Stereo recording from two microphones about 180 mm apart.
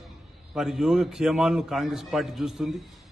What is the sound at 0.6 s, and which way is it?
A man's voice, centre (ahead or behind).